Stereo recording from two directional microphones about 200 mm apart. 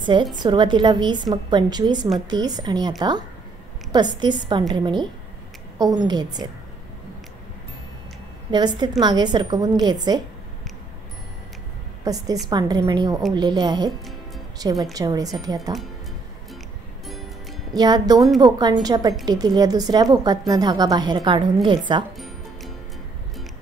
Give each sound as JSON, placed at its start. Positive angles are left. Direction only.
{"t": 0.0, "sound": "a woman's voice", "side_deg": -25}
{"t": 4.2, "sound": "a woman's voice", "side_deg": -20}
{"t": 6.0, "sound": "a woman's voice", "side_deg": -20}
{"t": 8.5, "sound": "a woman's voice", "side_deg": -20}
{"t": 12.0, "sound": "a woman's voice", "side_deg": -20}
{"t": 17.7, "sound": "a woman's voice", "side_deg": -20}
{"t": 22.1, "sound": "music", "side_deg": 0}